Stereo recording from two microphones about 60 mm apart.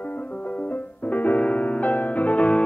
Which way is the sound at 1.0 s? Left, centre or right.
Left.